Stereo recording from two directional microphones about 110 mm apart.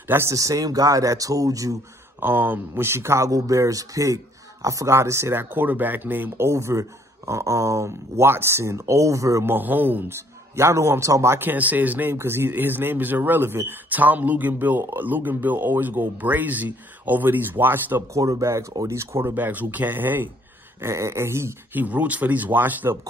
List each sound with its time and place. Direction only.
0.1 s speech: 25° right (ahead or behind)
2.1 s speech: 20° right (ahead or behind)
18.1 s speech: 30° right (ahead or behind)
21.8 s speech: 15° right (ahead or behind)